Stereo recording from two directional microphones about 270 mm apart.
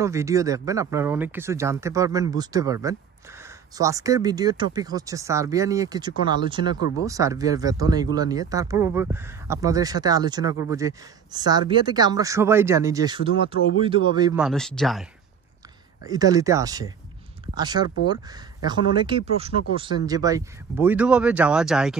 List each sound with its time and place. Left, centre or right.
0.0 s speech: centre
14.3 s speech: centre
16.1 s speech: centre